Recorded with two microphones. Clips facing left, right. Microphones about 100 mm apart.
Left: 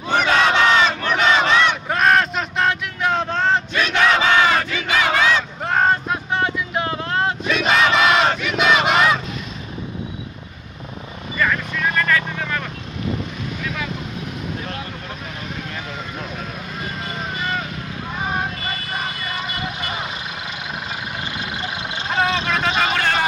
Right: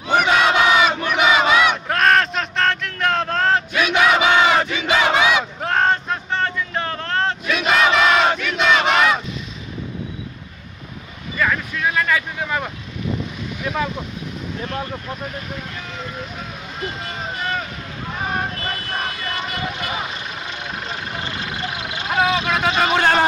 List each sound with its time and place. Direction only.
0.1 s battle cry: 10° right (ahead or behind)
1.9 s a sound: centre (ahead or behind); by 5.4 s 15° right (ahead or behind)
5.6 s a sound: centre (ahead or behind)
7.5 s crowd: centre (ahead or behind)
8.4 s battle cry: 5° left (ahead or behind)
11.3 s vehicle: 5° right (ahead or behind)
18.9 s vehicle: centre (ahead or behind)
21.2 s vehicle: 20° left (ahead or behind)
22.1 s vehicle: 10° right (ahead or behind)